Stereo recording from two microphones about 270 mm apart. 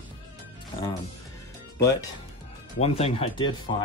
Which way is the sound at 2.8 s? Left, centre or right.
Left.